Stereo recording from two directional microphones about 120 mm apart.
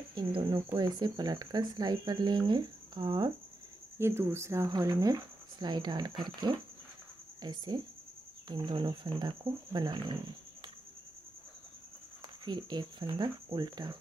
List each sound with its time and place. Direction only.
0.1 s speech: 40° right (ahead or behind)
4.0 s speech: 20° right (ahead or behind); by 10.1 s 40° right (ahead or behind)
12.4 s speech: 35° right (ahead or behind)